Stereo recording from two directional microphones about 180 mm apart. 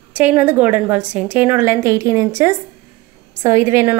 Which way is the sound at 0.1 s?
10° right (ahead or behind).